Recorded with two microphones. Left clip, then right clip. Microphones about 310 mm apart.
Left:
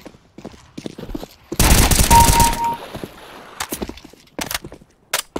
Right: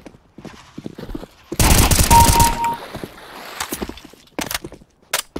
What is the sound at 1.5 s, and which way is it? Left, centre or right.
Fusillade, centre.